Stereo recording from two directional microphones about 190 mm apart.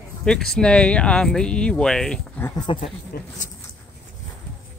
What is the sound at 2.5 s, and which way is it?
Speech, 25° left (ahead or behind).